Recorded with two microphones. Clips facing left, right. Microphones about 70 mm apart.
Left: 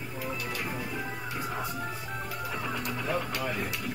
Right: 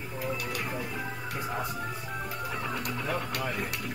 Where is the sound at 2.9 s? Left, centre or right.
Centre.